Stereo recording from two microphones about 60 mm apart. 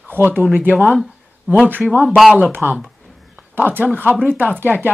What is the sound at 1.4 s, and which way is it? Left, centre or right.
Speech, right.